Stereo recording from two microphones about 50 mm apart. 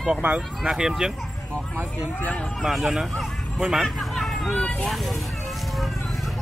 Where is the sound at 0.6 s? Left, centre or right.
Centre.